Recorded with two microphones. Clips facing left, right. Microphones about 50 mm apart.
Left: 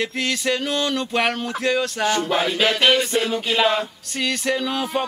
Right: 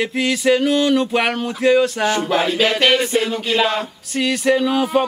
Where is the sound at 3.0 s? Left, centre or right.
Centre.